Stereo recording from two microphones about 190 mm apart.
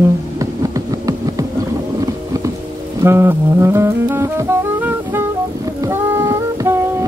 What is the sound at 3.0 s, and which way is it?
Music, 15° right (ahead or behind).